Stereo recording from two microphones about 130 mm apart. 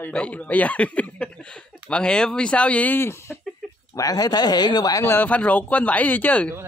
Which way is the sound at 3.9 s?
30° left (ahead or behind).